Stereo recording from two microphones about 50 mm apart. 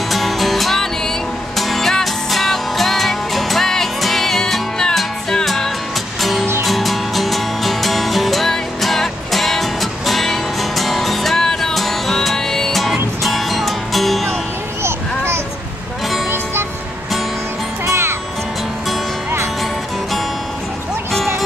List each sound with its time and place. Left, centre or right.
0.1 s music: centre
14.8 s a sound: right
17.8 s music: right